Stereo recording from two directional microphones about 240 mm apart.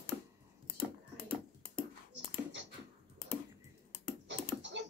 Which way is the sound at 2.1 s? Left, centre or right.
Right.